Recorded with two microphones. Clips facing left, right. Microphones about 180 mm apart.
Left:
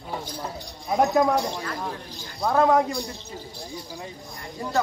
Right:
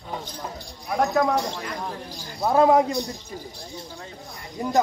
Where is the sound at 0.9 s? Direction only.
20° left (ahead or behind).